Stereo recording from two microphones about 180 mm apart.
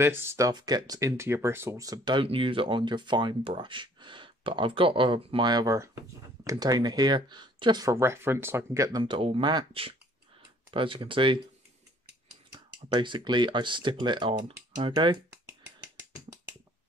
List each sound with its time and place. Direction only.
0.0 s speech: 15° right (ahead or behind)
12.5 s speech: 25° right (ahead or behind)